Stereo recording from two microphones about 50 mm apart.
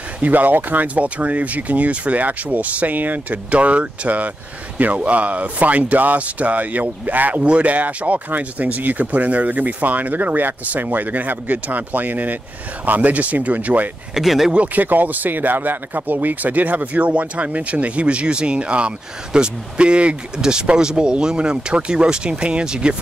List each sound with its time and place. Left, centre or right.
0.2 s speech: right
14.1 s speech: centre
14.5 s speech: right